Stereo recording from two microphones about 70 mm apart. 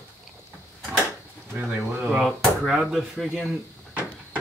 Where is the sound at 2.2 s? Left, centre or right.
Centre.